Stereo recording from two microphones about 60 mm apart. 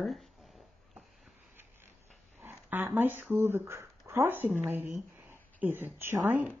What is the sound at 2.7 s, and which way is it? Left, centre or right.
Speech, right.